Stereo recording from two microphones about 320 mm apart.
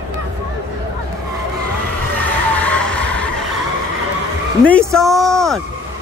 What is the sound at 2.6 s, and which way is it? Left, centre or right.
Music, centre.